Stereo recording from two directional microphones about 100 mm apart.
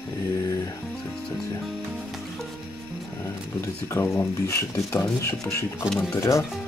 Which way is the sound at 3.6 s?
25° left (ahead or behind).